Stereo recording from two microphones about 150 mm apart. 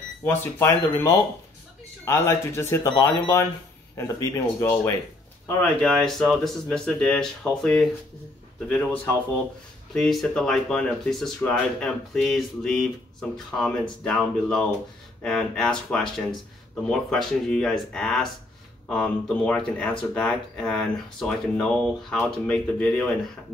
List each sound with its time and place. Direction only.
0.2 s speech: 15° left (ahead or behind)
5.6 s speech: 5° left (ahead or behind)